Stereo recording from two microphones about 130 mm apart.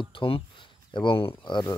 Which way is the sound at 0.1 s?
40° left (ahead or behind).